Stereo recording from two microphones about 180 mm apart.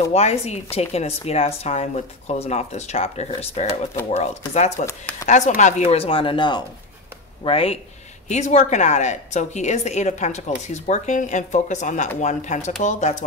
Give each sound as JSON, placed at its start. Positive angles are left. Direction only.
{"t": 0.1, "sound": "a woman's voice", "side_deg": 35}